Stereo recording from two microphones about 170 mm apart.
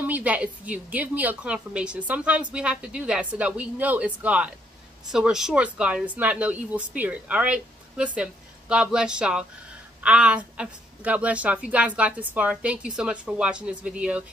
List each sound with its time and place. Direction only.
0.0 s a woman's voice: 10° right (ahead or behind)